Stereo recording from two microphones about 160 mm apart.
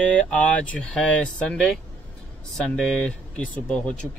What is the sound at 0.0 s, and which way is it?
Speech, 10° left (ahead or behind).